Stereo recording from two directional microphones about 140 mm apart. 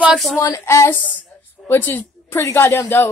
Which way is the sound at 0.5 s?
20° left (ahead or behind).